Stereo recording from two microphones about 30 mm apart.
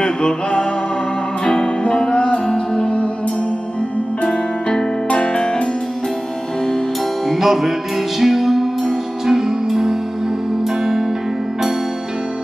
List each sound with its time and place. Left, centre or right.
0.0 s music: left
4.3 s music: left
7.3 s music: centre